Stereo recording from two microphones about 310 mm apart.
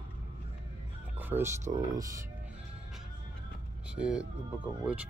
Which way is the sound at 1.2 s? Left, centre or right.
Centre.